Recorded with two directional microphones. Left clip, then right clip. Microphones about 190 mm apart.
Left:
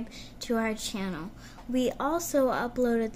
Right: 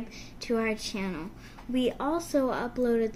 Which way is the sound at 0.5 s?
65° left (ahead or behind).